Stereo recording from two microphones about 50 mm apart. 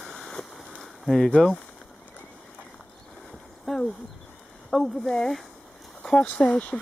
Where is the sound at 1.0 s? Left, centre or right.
Centre.